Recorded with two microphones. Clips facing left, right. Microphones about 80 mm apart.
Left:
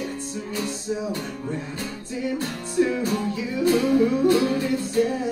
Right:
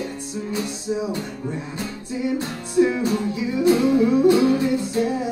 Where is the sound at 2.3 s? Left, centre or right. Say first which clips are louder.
Right 4 dB; right.